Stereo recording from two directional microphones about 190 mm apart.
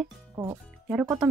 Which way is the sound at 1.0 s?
15° right (ahead or behind).